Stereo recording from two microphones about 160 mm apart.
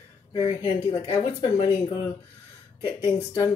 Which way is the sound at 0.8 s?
25° left (ahead or behind).